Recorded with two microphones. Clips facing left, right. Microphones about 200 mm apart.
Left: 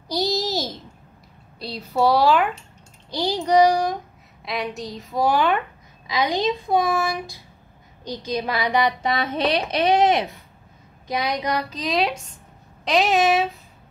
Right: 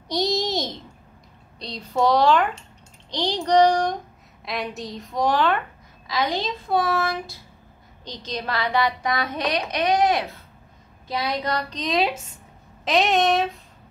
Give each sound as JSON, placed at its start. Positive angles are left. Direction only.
{"t": 0.1, "sound": "a sound", "side_deg": 0}
{"t": 1.6, "sound": "a woman's voice", "side_deg": 5}
{"t": 11.7, "sound": "a woman's voice", "side_deg": 0}